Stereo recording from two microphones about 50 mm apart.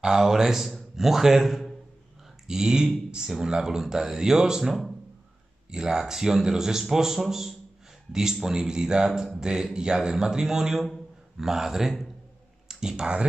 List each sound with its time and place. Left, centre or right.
0.0 s a man's voice: centre
2.4 s a man's voice: centre